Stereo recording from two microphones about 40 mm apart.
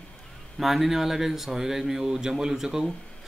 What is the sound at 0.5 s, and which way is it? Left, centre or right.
Speech, centre.